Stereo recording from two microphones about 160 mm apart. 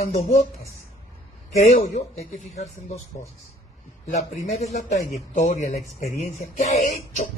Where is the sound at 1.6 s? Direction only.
45° left (ahead or behind).